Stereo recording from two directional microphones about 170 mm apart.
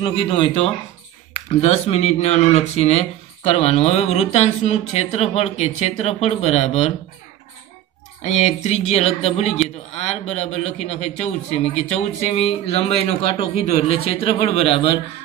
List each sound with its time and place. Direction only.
0.0 s speech: 35° left (ahead or behind)
1.6 s speech: 40° left (ahead or behind)
8.2 s speech: 45° left (ahead or behind)
13.4 s a man's voice: 60° right (ahead or behind)
13.8 s speech: 35° left (ahead or behind)